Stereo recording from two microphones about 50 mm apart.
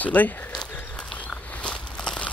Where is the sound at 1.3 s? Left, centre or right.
Left.